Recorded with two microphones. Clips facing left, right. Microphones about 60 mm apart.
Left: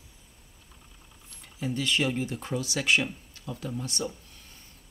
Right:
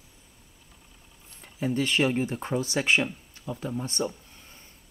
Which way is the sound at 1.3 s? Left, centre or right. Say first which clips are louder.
Right 4 dB; right.